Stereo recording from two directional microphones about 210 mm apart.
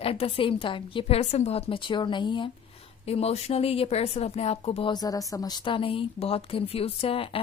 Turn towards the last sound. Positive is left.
turn(degrees=25)  # may be behind; listen again after turning